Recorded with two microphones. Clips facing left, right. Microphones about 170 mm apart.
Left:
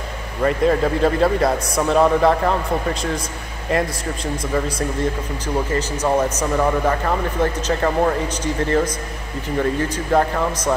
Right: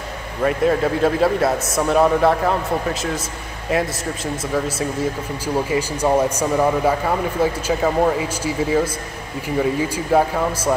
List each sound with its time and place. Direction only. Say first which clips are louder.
0.4 s a man's voice: even; centre (ahead or behind)